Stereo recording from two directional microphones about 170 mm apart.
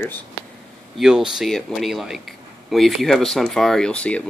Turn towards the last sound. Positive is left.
turn(degrees=5)  # may be behind; listen again after turning